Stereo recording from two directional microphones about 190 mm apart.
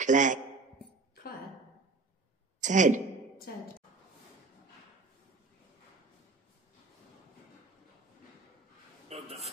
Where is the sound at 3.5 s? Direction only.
55° left (ahead or behind).